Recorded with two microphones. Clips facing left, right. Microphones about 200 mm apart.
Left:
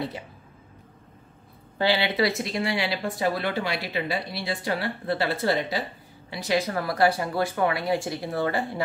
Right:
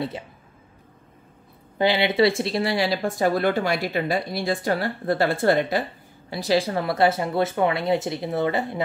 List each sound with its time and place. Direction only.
1.8 s speech: 20° right (ahead or behind); by 5.9 s 55° right (ahead or behind)
6.3 s speech: 35° right (ahead or behind)